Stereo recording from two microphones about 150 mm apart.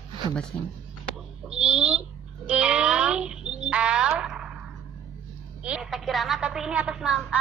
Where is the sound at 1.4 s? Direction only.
5° right (ahead or behind).